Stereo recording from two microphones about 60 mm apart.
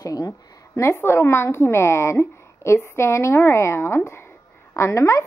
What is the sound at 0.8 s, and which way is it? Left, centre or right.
A woman's voice, left.